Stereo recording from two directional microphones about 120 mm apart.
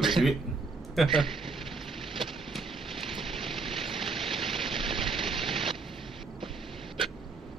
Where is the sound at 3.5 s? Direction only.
Centre (ahead or behind).